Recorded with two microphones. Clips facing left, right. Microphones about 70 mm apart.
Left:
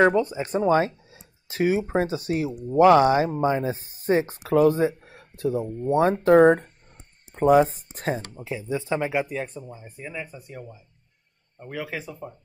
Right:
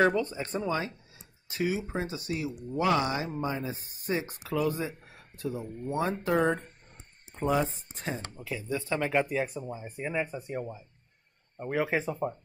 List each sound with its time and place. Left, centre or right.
0.0 s speech: centre
0.5 s speech: left
5.9 s speech: left
8.4 s speech: left
9.1 s speech: centre
9.6 s speech: centre; by 12.4 s right